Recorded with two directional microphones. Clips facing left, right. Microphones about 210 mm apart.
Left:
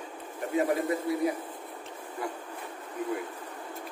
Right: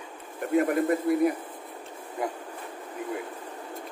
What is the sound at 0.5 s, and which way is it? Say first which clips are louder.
Speech: right 4 dB; 55° right (ahead or behind).